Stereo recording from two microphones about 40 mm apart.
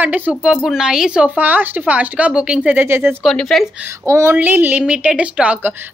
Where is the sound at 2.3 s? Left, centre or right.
Right.